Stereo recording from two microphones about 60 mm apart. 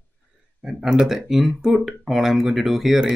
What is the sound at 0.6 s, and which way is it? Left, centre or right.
Speech, centre.